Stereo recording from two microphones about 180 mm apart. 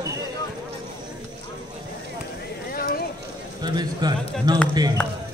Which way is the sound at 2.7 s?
55° left (ahead or behind).